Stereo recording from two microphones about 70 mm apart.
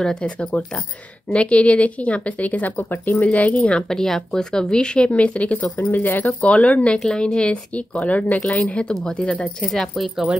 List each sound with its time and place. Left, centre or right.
0.0 s a woman's voice: centre
4.0 s a woman's voice: centre
9.7 s speech: centre